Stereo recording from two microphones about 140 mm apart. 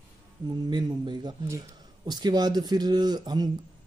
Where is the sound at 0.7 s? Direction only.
30° right (ahead or behind).